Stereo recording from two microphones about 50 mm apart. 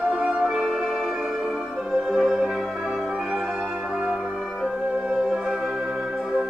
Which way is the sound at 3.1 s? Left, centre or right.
Right.